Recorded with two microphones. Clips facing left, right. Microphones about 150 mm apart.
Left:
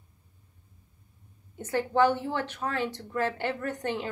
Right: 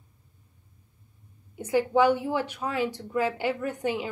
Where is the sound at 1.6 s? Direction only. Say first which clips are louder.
Right 2 dB; 10° right (ahead or behind).